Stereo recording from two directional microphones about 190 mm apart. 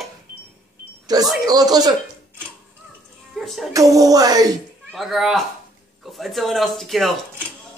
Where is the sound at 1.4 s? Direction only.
20° right (ahead or behind).